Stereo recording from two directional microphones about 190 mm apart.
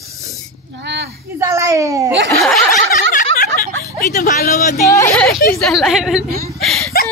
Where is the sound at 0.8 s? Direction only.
60° right (ahead or behind).